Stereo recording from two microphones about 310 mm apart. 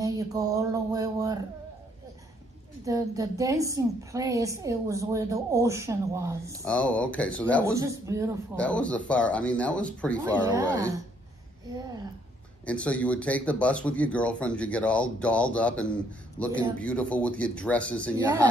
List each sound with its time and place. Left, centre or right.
0.0 s speech: centre
2.8 s a woman's voice: centre
6.6 s speech: centre
7.6 s a woman's voice: centre
8.5 s speech: centre
10.5 s a woman's voice: centre
12.6 s speech: centre